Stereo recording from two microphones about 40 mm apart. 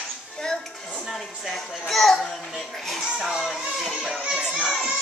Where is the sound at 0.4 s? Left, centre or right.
Centre.